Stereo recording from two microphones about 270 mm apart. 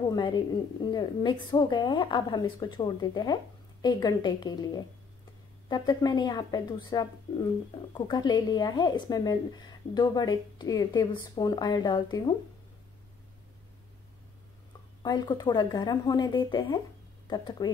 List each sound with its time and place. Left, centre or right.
0.1 s a woman's voice: centre
15.0 s a woman's voice: centre